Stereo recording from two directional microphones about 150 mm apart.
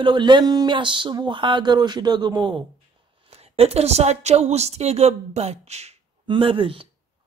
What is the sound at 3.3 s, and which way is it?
Speech, 40° right (ahead or behind).